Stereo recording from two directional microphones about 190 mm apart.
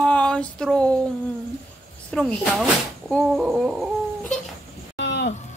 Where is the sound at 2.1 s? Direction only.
5° left (ahead or behind).